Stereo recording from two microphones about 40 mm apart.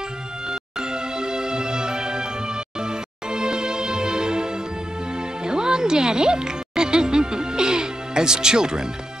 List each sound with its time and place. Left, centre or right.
0.5 s music: centre